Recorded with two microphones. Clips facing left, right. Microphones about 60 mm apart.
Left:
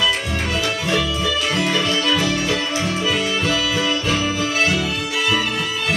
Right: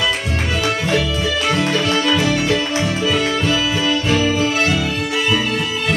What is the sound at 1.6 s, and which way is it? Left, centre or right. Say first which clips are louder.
Music: right 2 dB; right.